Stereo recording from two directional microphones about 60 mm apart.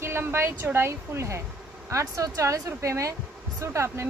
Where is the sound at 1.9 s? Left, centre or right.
Right.